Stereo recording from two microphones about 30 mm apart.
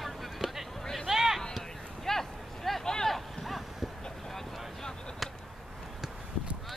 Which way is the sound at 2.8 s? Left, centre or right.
Centre.